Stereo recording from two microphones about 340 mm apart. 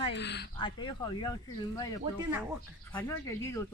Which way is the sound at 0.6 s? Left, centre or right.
Centre.